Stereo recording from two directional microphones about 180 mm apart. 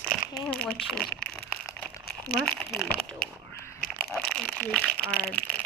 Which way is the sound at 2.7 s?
10° left (ahead or behind).